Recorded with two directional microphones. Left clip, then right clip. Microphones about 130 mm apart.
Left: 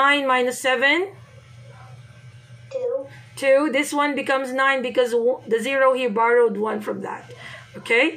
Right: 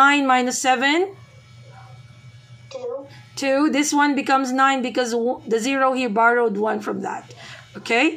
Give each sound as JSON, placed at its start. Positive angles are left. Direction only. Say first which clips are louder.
{"t": 0.0, "sound": "a woman's voice", "louder": "right 2 dB", "side_deg": -20}
{"t": 3.3, "sound": "a woman's voice", "louder": "left 2 dB", "side_deg": -20}